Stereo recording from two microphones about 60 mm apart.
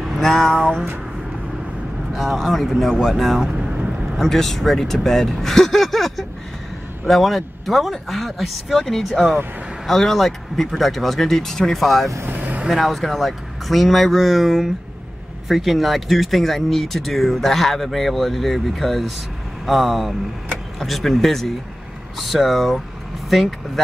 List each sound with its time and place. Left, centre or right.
0.0 s a sound: centre
2.1 s speech: centre
3.7 s vehicle: right
4.2 s speech: centre
12.3 s vehicle: right
12.6 s speech: centre